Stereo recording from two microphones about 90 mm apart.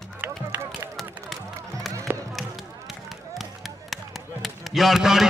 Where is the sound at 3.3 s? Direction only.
Centre (ahead or behind).